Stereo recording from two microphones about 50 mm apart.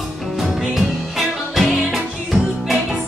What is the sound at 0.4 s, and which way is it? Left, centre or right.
Music, centre.